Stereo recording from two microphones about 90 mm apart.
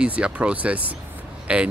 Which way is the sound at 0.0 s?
10° right (ahead or behind).